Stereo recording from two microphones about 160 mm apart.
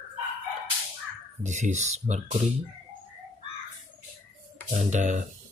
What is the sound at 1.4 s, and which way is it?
Speech, 45° right (ahead or behind).